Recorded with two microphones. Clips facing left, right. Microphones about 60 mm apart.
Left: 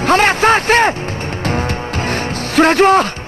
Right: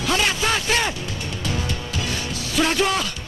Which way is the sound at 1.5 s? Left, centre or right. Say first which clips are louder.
Left 9 dB; left.